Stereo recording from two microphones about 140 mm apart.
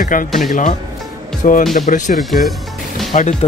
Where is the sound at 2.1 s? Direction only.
Centre (ahead or behind).